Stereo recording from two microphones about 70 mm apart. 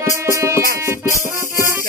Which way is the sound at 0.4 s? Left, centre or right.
Right.